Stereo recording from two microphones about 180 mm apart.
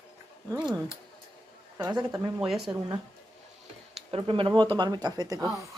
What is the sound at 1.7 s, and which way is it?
Speech, 20° right (ahead or behind).